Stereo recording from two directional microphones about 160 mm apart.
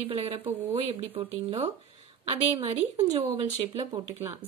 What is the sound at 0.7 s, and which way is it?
A woman's voice, 40° right (ahead or behind).